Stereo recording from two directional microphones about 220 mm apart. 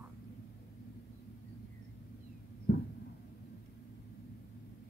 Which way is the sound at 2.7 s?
45° left (ahead or behind).